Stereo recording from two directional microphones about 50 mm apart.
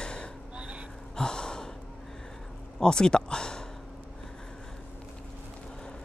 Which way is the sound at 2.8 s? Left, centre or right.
Centre.